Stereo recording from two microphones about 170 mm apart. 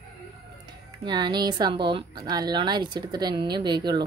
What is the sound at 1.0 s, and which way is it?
Speech, 25° right (ahead or behind).